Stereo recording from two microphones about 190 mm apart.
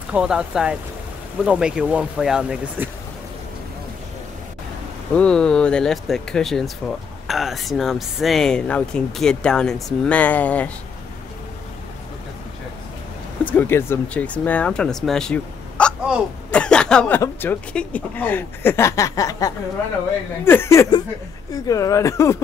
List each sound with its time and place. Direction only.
0.1 s speech: 5° right (ahead or behind)
5.1 s speech: 5° left (ahead or behind)
13.5 s speech: 10° left (ahead or behind)